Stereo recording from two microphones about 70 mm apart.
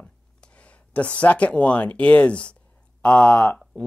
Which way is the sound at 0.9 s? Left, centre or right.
Centre.